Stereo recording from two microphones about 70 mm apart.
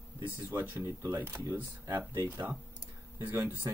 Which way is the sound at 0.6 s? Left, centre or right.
Right.